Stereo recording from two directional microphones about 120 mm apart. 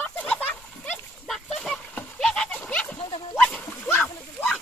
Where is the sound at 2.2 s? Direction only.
10° left (ahead or behind).